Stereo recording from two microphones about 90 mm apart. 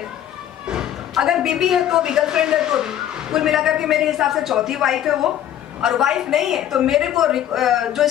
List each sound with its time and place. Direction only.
0.7 s a woman's voice: 5° right (ahead or behind)